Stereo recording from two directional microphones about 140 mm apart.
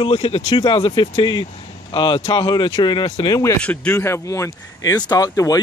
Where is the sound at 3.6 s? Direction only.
10° left (ahead or behind).